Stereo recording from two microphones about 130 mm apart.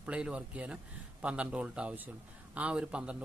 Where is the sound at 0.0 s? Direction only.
10° right (ahead or behind).